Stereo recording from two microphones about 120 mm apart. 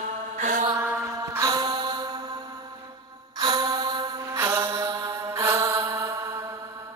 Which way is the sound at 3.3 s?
35° right (ahead or behind).